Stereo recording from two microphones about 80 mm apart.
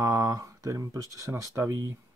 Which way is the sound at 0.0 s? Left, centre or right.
Right.